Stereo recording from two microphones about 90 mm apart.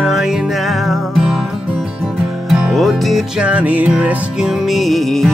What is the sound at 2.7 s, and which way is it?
Music, centre (ahead or behind).